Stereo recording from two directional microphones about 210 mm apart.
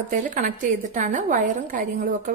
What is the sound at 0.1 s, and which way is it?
A woman's voice, 40° right (ahead or behind).